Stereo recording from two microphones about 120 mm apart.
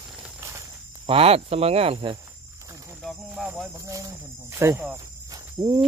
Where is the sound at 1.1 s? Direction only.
55° right (ahead or behind).